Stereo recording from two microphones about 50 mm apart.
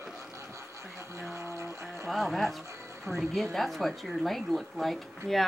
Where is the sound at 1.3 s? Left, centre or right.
Right.